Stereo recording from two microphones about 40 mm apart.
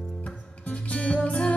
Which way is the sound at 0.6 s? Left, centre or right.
Left.